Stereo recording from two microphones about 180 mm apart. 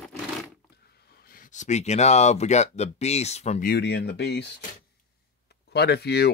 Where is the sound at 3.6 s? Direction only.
65° left (ahead or behind).